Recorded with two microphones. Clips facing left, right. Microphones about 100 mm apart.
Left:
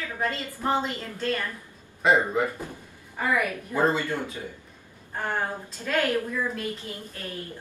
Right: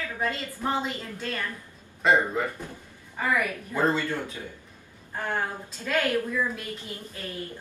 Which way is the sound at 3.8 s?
15° left (ahead or behind).